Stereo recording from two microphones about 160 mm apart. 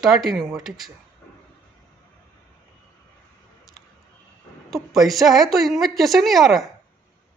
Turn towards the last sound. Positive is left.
turn(degrees=0)  # may be behind; listen again after turning